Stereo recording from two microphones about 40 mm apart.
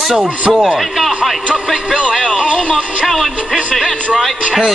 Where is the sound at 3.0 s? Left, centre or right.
Centre.